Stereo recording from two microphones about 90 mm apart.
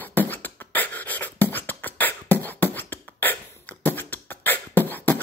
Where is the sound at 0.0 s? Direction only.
20° left (ahead or behind).